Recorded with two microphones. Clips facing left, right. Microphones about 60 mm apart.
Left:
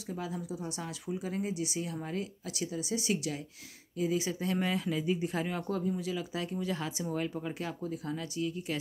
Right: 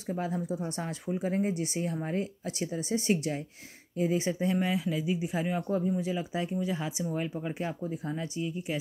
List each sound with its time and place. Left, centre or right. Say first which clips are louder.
0.0 s speech: right 5 dB; right
4.6 s speech: right 2 dB; centre; by 6.5 s right
6.5 s speech: right 3 dB; centre